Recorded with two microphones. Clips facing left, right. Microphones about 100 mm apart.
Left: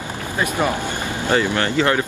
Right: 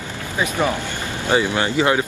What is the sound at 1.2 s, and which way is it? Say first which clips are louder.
Speech: even; 15° right (ahead or behind).